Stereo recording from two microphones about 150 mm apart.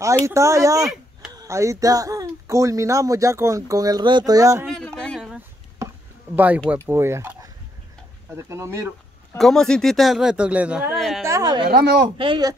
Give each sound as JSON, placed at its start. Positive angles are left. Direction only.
{"t": 0.2, "sound": "speech", "side_deg": -20}
{"t": 4.6, "sound": "a sound", "side_deg": 5}
{"t": 6.3, "sound": "speech", "side_deg": -10}
{"t": 8.4, "sound": "speech", "side_deg": -20}
{"t": 9.4, "sound": "speech", "side_deg": 5}
{"t": 11.2, "sound": "speech", "side_deg": -25}
{"t": 11.7, "sound": "speech", "side_deg": -90}
{"t": 12.2, "sound": "speech", "side_deg": -30}